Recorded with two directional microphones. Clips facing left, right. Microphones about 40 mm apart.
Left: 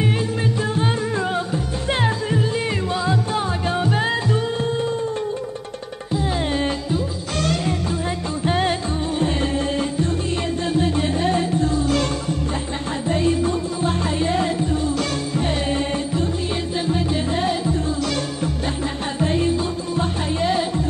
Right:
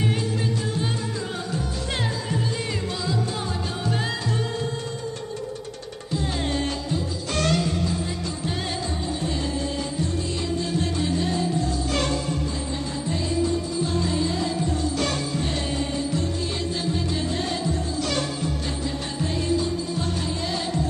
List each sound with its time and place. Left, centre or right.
0.6 s music: left
6.1 s music: centre
8.5 s music: left
9.8 s music: left
13.1 s music: left
15.3 s music: left
19.1 s music: left